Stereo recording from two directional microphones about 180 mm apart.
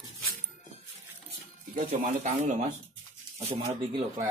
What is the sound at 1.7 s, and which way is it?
Speech, 45° right (ahead or behind).